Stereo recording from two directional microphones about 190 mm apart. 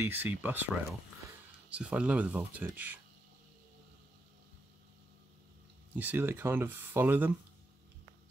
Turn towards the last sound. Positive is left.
turn(degrees=-10)  # may be behind; listen again after turning